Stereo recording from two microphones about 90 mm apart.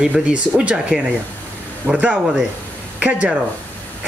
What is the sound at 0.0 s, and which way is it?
Speech, 10° right (ahead or behind).